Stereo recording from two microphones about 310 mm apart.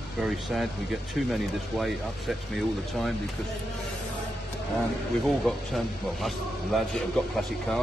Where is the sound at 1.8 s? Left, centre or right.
Centre.